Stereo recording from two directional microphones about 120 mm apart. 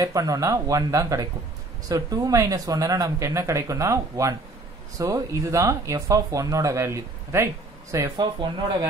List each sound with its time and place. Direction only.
0.0 s speech: 30° right (ahead or behind)
8.2 s speech: 40° right (ahead or behind)